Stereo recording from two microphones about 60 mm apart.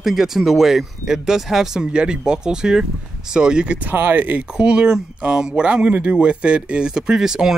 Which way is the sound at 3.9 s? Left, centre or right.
Right.